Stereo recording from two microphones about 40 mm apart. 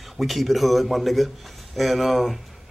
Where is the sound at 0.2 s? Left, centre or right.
Centre.